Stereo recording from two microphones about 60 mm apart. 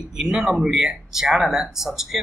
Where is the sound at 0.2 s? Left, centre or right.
Centre.